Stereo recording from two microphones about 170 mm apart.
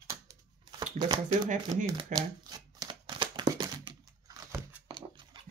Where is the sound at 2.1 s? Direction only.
25° right (ahead or behind).